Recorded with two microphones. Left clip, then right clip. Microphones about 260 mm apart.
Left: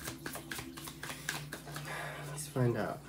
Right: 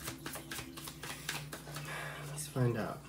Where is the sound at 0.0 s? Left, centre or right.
Centre.